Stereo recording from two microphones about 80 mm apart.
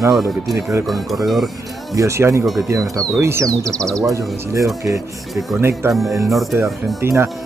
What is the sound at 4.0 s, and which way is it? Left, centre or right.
Speech, right.